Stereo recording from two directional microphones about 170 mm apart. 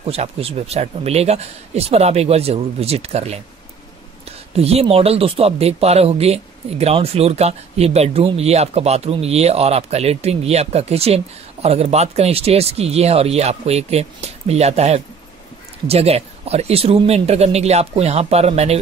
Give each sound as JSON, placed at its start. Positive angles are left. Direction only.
{"t": 0.0, "sound": "speech", "side_deg": -35}
{"t": 4.6, "sound": "speech", "side_deg": -35}